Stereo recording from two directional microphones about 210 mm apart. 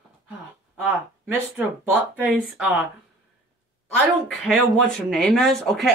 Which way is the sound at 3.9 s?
5° left (ahead or behind).